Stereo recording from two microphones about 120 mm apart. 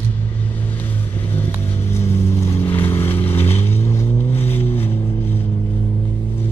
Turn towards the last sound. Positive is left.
turn(degrees=20)  # may be behind; listen again after turning